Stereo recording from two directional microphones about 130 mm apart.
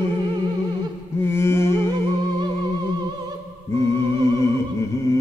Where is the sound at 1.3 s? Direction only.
20° left (ahead or behind).